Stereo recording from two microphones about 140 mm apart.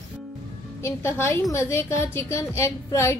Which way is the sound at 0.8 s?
20° left (ahead or behind).